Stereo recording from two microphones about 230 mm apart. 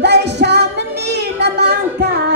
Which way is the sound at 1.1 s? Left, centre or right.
Right.